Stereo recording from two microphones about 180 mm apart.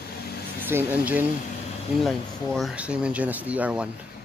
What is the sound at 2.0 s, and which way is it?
Speech, centre (ahead or behind).